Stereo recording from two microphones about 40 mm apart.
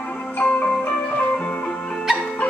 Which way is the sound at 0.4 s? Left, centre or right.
Left.